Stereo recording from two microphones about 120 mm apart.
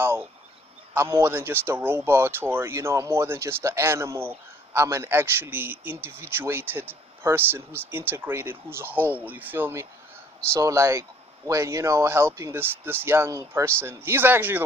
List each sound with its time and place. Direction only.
0.0 s bird: 20° right (ahead or behind)
0.9 s a man's voice: 20° right (ahead or behind)